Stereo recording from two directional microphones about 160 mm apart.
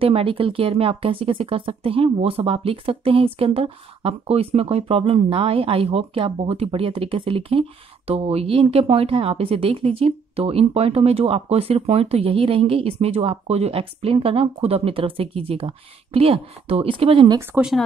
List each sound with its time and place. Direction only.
0.0 s speech: 35° right (ahead or behind)
17.4 s speech: 5° right (ahead or behind)